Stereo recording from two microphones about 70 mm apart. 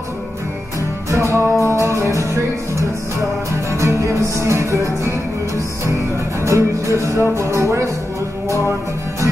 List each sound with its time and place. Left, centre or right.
1.1 s music: right
3.7 s music: right
6.4 s music: right